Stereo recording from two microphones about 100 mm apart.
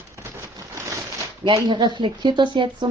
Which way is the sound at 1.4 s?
50° right (ahead or behind).